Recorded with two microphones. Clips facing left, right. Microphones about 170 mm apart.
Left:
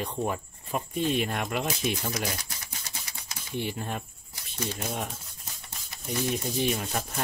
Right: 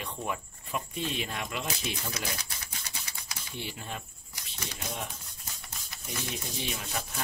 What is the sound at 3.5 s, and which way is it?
Speech, 50° left (ahead or behind).